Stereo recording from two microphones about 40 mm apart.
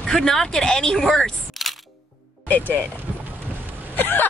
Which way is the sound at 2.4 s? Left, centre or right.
Left.